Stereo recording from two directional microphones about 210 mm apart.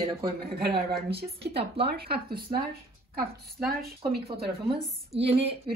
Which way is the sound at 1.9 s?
50° right (ahead or behind).